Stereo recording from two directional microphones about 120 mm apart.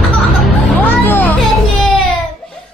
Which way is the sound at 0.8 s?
15° left (ahead or behind).